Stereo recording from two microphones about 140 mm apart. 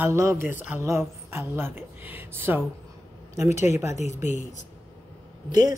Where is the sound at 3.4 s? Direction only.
55° left (ahead or behind).